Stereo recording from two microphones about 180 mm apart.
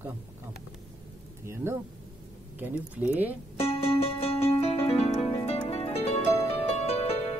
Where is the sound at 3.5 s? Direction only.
35° left (ahead or behind).